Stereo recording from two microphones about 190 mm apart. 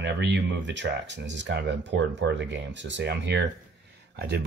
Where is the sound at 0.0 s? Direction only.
65° right (ahead or behind).